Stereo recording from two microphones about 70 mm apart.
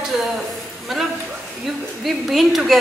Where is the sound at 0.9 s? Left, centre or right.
Centre.